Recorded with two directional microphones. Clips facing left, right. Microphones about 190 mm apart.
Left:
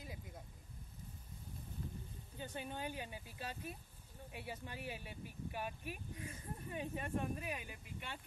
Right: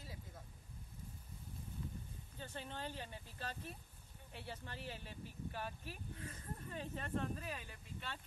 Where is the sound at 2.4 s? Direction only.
10° left (ahead or behind).